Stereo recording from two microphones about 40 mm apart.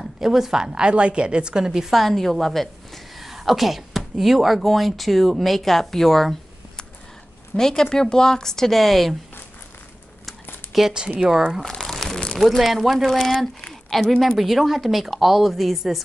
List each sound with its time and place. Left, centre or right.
0.0 s a woman's voice: centre
0.8 s a woman's voice: right
2.0 s a woman's voice: centre
7.5 s speech: centre
10.2 s a sound: centre
11.2 s speech: centre
12.0 s a sound: centre
12.4 s a woman's voice: centre